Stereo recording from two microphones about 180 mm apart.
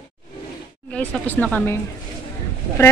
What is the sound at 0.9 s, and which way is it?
Speech, 10° left (ahead or behind).